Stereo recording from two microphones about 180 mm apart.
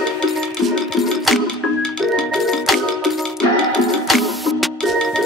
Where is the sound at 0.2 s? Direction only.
Centre (ahead or behind).